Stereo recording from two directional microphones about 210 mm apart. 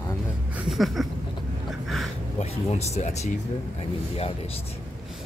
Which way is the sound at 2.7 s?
30° left (ahead or behind).